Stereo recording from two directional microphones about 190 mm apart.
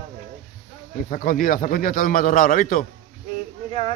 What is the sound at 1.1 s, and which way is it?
A man's voice, 50° left (ahead or behind).